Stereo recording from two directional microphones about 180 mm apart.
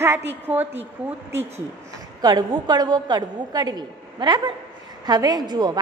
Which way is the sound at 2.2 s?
25° right (ahead or behind).